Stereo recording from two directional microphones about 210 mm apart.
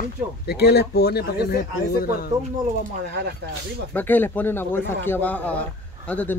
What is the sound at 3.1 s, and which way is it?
Speech, 50° right (ahead or behind).